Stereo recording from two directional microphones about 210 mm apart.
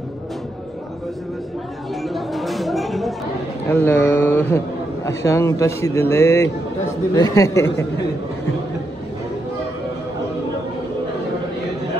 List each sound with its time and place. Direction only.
2.0 s chatter: centre (ahead or behind)
3.6 s a man's voice: 10° left (ahead or behind)